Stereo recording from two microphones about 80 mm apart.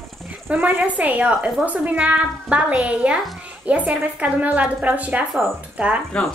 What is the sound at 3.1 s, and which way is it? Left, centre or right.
Speech, centre.